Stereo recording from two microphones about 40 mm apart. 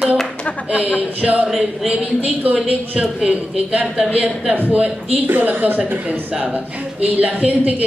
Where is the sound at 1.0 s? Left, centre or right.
Right.